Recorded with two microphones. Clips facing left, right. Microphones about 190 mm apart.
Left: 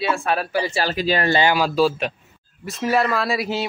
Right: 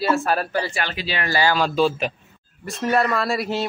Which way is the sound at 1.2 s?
25° left (ahead or behind).